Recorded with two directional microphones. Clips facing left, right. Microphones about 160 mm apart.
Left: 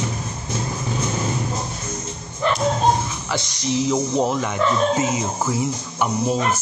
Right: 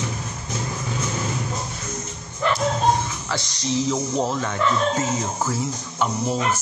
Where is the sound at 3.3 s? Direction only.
15° left (ahead or behind).